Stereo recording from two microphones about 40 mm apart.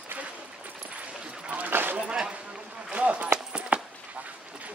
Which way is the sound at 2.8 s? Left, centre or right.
Right.